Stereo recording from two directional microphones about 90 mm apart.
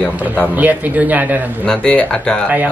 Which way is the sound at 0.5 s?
20° right (ahead or behind).